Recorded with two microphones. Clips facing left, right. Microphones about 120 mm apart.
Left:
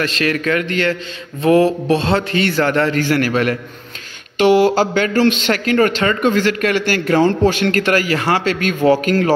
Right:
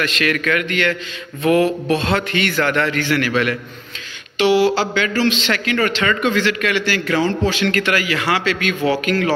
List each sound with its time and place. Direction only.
0.0 s a man's voice: 35° left (ahead or behind)